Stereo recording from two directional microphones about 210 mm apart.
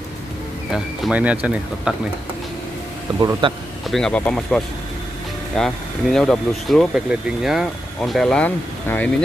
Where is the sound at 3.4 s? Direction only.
25° right (ahead or behind).